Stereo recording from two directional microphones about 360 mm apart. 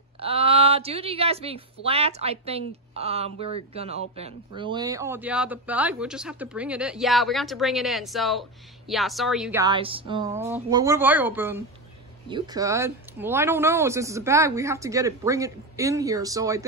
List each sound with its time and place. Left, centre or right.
0.2 s a woman's voice: centre